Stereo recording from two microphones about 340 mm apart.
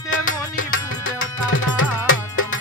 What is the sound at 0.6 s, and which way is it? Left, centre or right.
Tabla, left.